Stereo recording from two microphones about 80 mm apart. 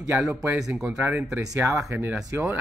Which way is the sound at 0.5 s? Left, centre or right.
Centre.